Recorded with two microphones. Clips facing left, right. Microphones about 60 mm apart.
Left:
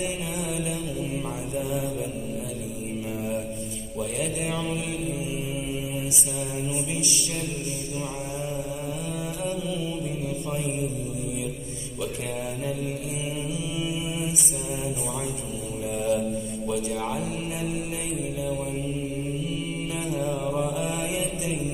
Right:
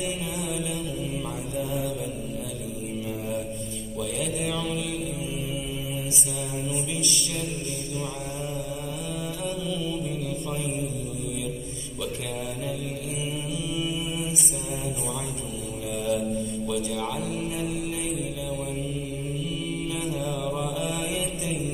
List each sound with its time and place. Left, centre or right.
4.5 s mantra: left
13.7 s mantra: left
16.1 s mantra: centre
16.6 s a man's voice: left
20.1 s mantra: left
20.5 s mantra: centre
20.8 s mantra: left